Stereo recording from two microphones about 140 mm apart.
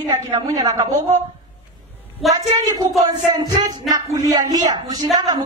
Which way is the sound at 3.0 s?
25° right (ahead or behind).